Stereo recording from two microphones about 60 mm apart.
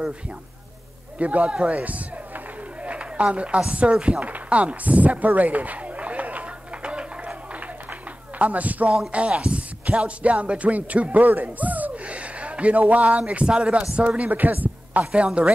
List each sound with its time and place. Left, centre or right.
1.1 s a man's voice: right
1.7 s run: right
8.4 s speech: right
11.2 s a sound: right
13.3 s a woman's voice: centre
15.0 s a woman's voice: centre